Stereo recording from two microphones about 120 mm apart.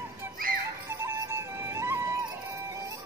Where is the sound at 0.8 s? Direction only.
20° right (ahead or behind).